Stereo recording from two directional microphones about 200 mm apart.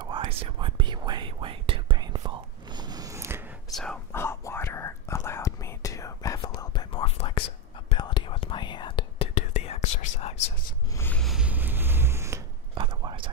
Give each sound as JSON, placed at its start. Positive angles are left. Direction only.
{"t": 0.0, "sound": "whispering", "side_deg": -25}
{"t": 3.7, "sound": "whispering", "side_deg": 5}
{"t": 10.9, "sound": "a sound", "side_deg": 10}
{"t": 12.7, "sound": "whispering", "side_deg": -25}